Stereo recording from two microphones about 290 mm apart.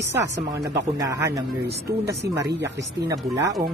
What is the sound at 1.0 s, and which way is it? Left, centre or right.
Speech, centre.